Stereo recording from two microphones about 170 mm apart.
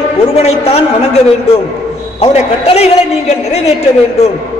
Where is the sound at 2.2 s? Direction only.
40° left (ahead or behind).